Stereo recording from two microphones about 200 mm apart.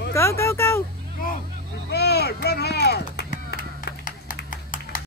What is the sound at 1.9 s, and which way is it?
Speech, 55° left (ahead or behind).